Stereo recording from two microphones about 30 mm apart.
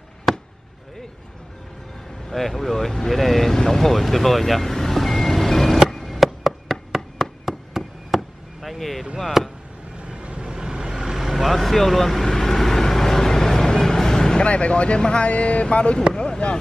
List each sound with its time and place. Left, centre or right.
0.3 s chop: centre
2.2 s speech: centre
3.5 s speech: left
3.8 s vehicle: centre
5.9 s music: centre
6.1 s a sound: centre
9.4 s chop: centre
9.9 s vehicle: right
11.1 s vehicle: centre
14.4 s speech: left